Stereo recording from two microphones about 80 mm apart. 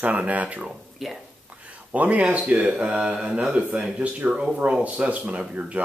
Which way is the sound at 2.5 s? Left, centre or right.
Centre.